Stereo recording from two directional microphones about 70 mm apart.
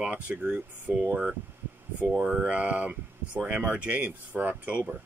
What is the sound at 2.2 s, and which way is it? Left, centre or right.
Speech, centre.